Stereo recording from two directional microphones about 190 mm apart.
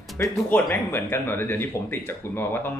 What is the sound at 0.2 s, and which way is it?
Speech, 10° left (ahead or behind).